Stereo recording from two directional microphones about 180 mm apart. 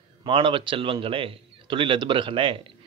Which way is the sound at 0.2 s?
30° right (ahead or behind).